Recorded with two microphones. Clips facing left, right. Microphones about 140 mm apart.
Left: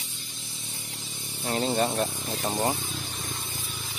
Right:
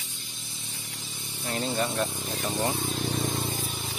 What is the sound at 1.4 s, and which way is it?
Speech, 30° left (ahead or behind).